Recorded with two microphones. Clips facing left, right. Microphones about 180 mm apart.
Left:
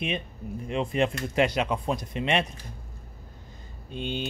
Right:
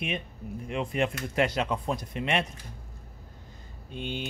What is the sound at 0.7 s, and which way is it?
Speech, 25° left (ahead or behind).